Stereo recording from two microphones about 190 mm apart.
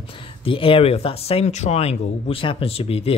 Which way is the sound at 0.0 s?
25° left (ahead or behind).